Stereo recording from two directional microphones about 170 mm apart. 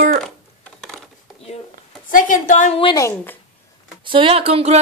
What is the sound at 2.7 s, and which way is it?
Speech, 30° left (ahead or behind).